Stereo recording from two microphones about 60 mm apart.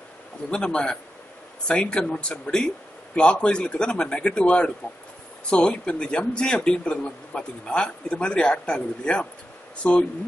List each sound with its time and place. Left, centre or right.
0.5 s speech: centre